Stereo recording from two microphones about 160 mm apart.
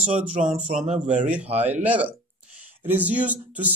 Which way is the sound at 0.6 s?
45° right (ahead or behind).